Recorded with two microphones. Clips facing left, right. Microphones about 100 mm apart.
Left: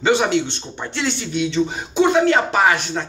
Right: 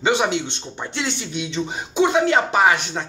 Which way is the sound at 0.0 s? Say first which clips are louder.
Left 3 dB; 15° right (ahead or behind).